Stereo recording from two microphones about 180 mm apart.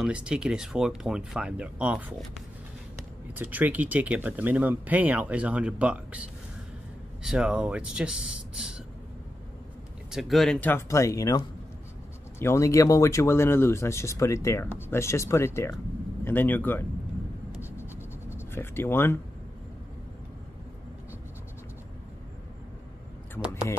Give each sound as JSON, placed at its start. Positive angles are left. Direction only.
{"t": 0.0, "sound": "speech", "side_deg": -5}
{"t": 3.3, "sound": "speech", "side_deg": -10}
{"t": 7.2, "sound": "speech", "side_deg": -5}
{"t": 10.1, "sound": "speech", "side_deg": 0}
{"t": 17.5, "sound": "writing", "side_deg": 15}
{"t": 18.5, "sound": "speech", "side_deg": 10}